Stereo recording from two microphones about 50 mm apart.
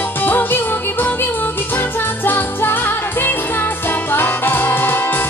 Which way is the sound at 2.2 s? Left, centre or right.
Left.